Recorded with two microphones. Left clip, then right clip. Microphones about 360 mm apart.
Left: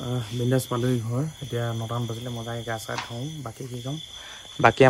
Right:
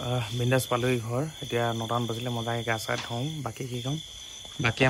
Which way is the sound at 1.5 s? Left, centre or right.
Centre.